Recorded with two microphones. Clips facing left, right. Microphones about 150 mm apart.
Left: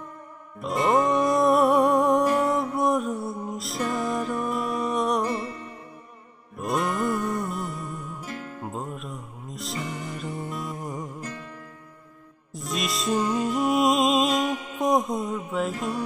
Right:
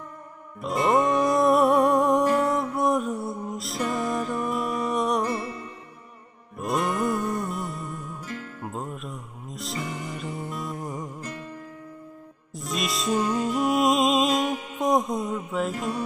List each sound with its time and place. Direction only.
0.6 s music: centre (ahead or behind)
5.3 s music: 15° right (ahead or behind)
6.5 s music: centre (ahead or behind)
10.8 s music: 20° left (ahead or behind)
12.5 s music: centre (ahead or behind)
14.8 s mantra: centre (ahead or behind)
15.5 s music: centre (ahead or behind)